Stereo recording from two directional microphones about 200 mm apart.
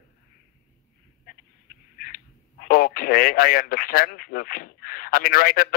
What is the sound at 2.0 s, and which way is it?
Speech, 45° left (ahead or behind).